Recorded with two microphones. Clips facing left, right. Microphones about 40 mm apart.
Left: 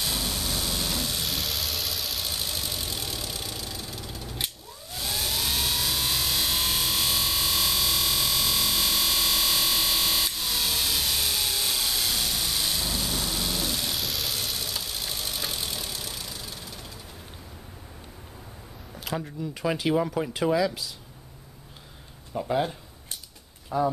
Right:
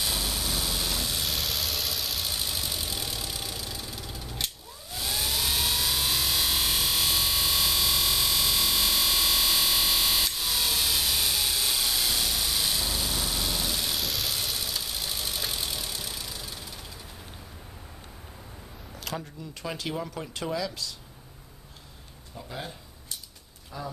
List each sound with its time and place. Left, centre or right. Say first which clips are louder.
0.0 s vehicle: even; centre
19.0 s speech: left 5 dB; centre
22.3 s speech: left 12 dB; left
23.7 s speech: left 13 dB; left